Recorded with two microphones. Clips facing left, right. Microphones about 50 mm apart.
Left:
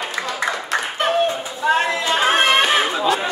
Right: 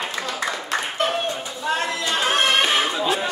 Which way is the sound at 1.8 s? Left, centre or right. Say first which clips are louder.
Left 5 dB; left.